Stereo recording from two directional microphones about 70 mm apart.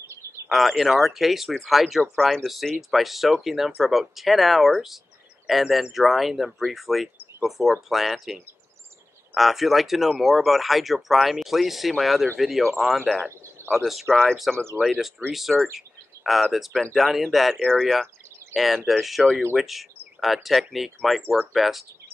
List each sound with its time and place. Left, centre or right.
0.5 s speech: centre
13.6 s a sound: right
14.1 s speech: centre
14.8 s speech: centre